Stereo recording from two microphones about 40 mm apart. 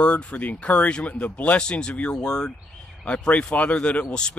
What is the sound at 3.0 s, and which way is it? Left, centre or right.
Speech, left.